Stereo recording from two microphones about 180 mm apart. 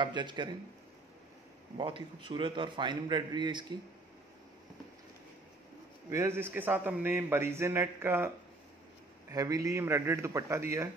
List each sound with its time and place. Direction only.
0.0 s a man's voice: 25° right (ahead or behind)
1.8 s a man's voice: 30° right (ahead or behind)
6.0 s a man's voice: 15° right (ahead or behind)
9.3 s a man's voice: 20° right (ahead or behind)